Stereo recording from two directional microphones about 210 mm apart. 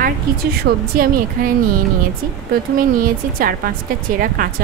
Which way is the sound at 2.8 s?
40° right (ahead or behind).